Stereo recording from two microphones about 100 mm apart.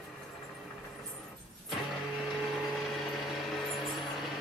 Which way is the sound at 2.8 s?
Centre (ahead or behind).